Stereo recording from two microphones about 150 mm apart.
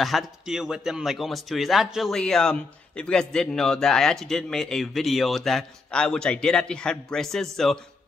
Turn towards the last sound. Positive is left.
turn(degrees=0)  # may be behind; listen again after turning